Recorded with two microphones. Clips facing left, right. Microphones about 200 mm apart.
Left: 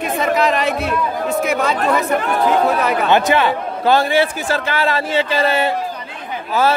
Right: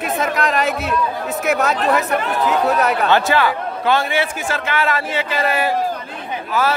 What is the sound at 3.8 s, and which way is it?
A man's voice, 35° left (ahead or behind).